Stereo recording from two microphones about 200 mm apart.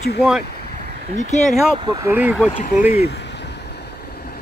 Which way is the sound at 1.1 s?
35° left (ahead or behind).